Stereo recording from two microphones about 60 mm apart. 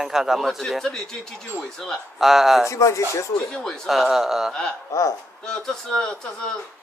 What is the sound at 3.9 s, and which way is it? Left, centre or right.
Speech, centre.